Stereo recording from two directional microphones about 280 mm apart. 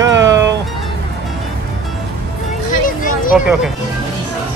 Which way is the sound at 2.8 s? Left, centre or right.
Left.